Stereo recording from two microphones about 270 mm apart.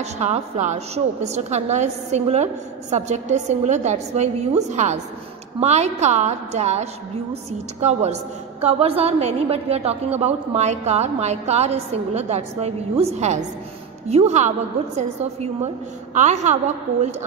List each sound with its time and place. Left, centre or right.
0.0 s a woman's voice: right
15.6 s a woman's voice: right